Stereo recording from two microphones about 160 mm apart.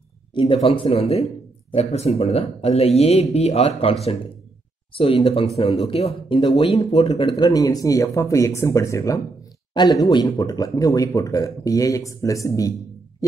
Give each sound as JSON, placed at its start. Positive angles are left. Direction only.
{"t": 0.3, "sound": "speech", "side_deg": 30}
{"t": 4.9, "sound": "speech", "side_deg": 35}
{"t": 7.4, "sound": "speech", "side_deg": 20}